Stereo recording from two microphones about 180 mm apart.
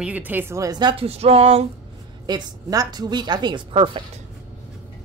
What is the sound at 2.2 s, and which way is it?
A woman's voice, 25° right (ahead or behind).